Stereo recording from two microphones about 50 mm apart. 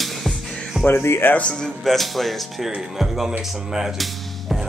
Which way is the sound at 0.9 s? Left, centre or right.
Left.